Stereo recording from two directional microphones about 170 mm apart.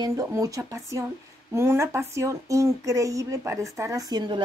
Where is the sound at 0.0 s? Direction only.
20° right (ahead or behind).